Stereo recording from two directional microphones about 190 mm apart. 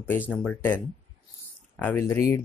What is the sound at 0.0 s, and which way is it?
Speech, 10° left (ahead or behind).